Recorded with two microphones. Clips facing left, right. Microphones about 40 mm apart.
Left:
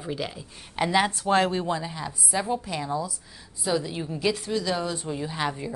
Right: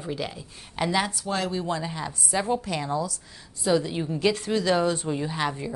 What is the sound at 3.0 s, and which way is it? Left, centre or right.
Speech, centre.